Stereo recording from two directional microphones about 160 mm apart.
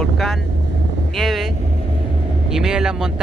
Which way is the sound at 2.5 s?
5° right (ahead or behind).